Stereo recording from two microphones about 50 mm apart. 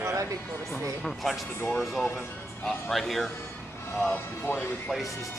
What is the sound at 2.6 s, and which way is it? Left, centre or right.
Speech, centre.